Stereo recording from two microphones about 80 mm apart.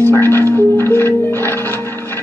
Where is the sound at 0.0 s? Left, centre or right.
Left.